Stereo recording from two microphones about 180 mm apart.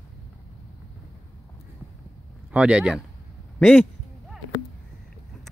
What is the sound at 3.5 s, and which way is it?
Speech, 5° left (ahead or behind).